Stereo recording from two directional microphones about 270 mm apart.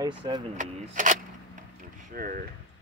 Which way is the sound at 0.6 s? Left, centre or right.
Right.